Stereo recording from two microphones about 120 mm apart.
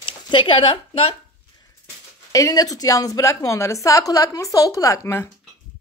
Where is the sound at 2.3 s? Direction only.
30° left (ahead or behind).